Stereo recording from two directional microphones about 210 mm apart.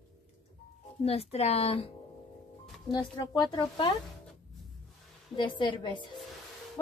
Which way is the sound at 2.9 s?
20° left (ahead or behind).